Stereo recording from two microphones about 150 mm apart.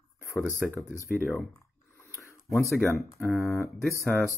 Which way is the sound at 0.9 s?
15° right (ahead or behind).